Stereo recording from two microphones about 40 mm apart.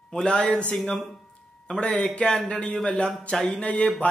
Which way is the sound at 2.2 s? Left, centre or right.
Left.